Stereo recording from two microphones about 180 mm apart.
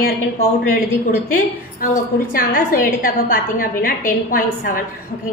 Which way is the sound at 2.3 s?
50° left (ahead or behind).